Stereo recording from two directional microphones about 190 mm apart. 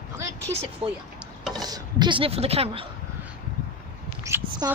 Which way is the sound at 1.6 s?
20° right (ahead or behind).